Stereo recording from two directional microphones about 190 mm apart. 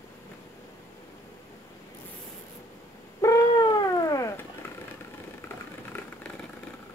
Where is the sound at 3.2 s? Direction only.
20° left (ahead or behind).